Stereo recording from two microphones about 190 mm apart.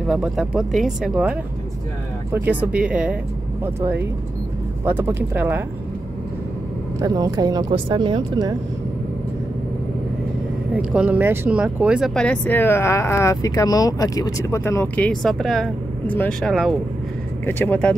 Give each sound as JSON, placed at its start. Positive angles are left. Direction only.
{"t": 0.0, "sound": "speech", "side_deg": -5}
{"t": 7.0, "sound": "speech", "side_deg": -20}
{"t": 10.7, "sound": "speech", "side_deg": -5}